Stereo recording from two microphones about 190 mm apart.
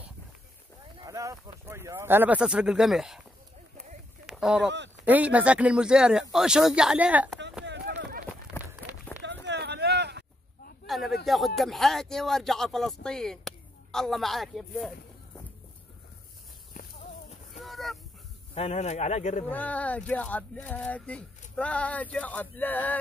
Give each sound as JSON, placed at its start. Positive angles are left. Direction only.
{"t": 0.9, "sound": "speech", "side_deg": -15}
{"t": 4.3, "sound": "speech", "side_deg": 0}
{"t": 4.6, "sound": "speech", "side_deg": -70}
{"t": 5.0, "sound": "speech", "side_deg": -10}
{"t": 7.6, "sound": "a sound", "side_deg": -65}
{"t": 8.0, "sound": "run", "side_deg": -50}
{"t": 9.2, "sound": "a sound", "side_deg": -65}
{"t": 10.9, "sound": "a sound", "side_deg": 0}
{"t": 11.2, "sound": "speech", "side_deg": 0}
{"t": 17.5, "sound": "fowl", "side_deg": 0}
{"t": 18.5, "sound": "speech", "side_deg": 35}
{"t": 19.5, "sound": "speech", "side_deg": 10}